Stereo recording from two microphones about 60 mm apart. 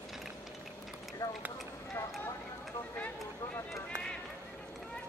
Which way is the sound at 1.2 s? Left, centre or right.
Left.